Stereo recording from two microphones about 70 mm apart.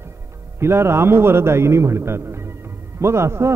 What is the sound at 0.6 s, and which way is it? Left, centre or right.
A man's voice, right.